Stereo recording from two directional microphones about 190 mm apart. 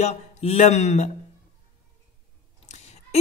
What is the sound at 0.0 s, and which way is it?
A woman's voice, 35° left (ahead or behind).